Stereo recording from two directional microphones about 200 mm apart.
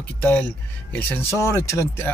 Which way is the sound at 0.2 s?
5° left (ahead or behind).